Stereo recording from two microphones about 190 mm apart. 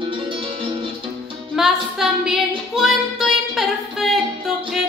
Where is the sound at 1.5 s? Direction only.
5° right (ahead or behind).